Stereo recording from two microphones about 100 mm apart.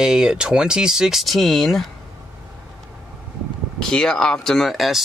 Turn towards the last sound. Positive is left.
turn(degrees=0)  # may be behind; listen again after turning